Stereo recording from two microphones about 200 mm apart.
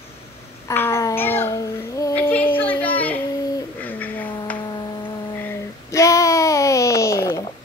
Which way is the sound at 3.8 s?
10° left (ahead or behind).